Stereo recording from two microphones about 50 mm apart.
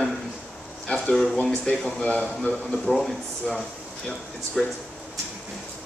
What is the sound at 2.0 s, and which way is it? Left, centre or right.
Speech, left.